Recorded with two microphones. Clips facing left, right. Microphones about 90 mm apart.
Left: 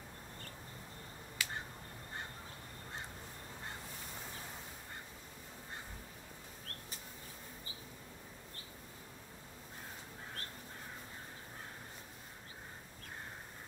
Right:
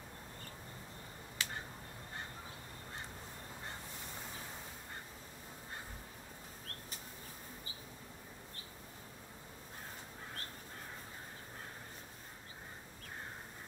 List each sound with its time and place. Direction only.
1.4 s finger snapping: 30° right (ahead or behind)